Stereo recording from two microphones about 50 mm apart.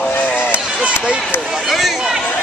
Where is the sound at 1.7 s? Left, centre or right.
Centre.